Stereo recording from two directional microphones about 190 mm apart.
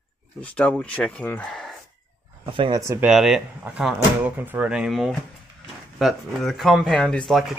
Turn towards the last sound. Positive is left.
turn(degrees=0)  # may be behind; listen again after turning